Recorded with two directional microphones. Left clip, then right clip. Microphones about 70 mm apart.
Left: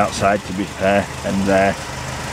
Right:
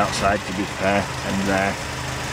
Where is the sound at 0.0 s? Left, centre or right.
Centre.